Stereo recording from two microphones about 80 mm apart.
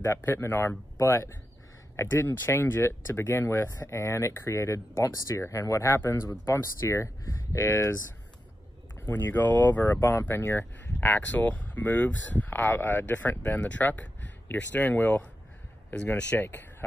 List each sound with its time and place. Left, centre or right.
0.0 s speech: left
9.0 s speech: left